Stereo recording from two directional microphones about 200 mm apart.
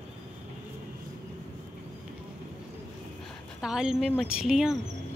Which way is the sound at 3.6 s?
5° right (ahead or behind).